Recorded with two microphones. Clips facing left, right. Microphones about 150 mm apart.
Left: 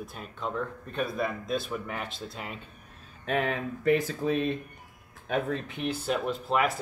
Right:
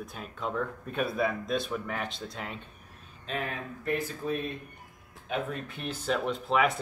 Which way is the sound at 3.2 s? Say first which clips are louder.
Left 6 dB; 80° left.